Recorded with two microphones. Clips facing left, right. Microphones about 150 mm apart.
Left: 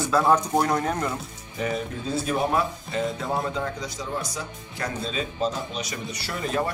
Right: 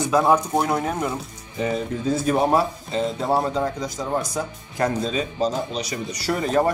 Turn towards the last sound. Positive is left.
turn(degrees=-40)  # may be behind; listen again after turning